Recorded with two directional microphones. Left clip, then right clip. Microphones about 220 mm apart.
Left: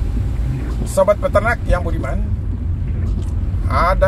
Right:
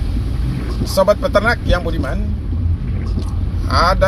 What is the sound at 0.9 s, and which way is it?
Speech, 15° right (ahead or behind).